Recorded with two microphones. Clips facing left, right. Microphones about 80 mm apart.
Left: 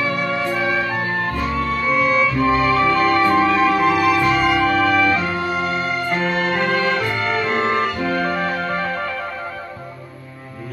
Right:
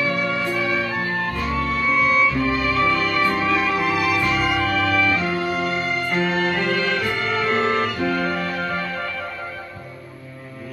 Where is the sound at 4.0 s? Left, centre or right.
Centre.